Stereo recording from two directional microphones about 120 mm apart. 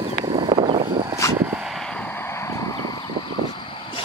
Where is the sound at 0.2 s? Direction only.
40° right (ahead or behind).